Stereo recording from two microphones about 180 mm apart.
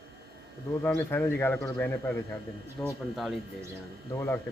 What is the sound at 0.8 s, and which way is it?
Speech, 10° left (ahead or behind).